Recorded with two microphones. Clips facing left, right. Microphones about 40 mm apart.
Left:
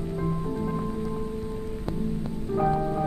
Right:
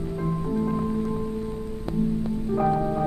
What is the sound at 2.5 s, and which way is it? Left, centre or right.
Music, centre.